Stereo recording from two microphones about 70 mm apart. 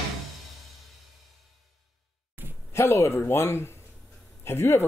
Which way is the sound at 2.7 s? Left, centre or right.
Left.